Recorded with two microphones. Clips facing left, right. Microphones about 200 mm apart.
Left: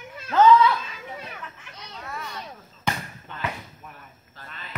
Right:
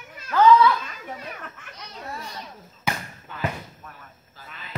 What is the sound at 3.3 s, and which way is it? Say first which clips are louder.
Speech: right 3 dB; 5° right (ahead or behind).